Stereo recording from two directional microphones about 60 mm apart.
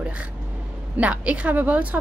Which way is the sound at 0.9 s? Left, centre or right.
Right.